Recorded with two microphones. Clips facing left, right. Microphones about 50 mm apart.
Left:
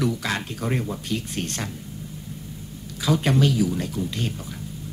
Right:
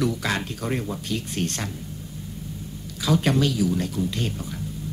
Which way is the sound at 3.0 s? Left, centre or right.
Centre.